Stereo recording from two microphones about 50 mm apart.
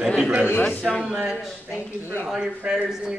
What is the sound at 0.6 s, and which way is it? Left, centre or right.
Speech, left.